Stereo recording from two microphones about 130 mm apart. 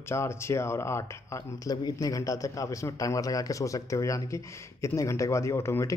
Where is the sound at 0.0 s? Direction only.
20° left (ahead or behind).